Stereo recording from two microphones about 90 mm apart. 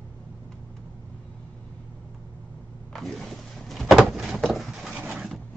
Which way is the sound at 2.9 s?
5° left (ahead or behind).